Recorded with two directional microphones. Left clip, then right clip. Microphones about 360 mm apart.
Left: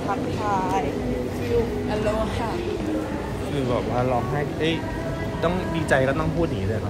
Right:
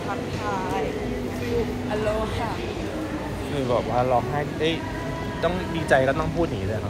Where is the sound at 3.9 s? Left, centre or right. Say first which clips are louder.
Right 2 dB; centre.